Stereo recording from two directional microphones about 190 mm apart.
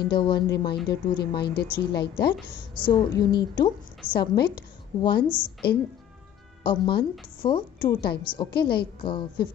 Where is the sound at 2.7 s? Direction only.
25° left (ahead or behind).